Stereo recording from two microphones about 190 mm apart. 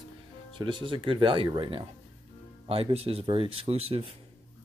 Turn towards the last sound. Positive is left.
turn(degrees=-30)  # may be behind; listen again after turning